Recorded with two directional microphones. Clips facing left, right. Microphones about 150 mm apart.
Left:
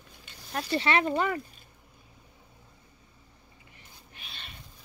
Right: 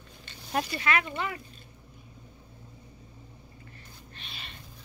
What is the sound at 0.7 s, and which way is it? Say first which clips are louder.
Speech: left 6 dB; 30° left (ahead or behind).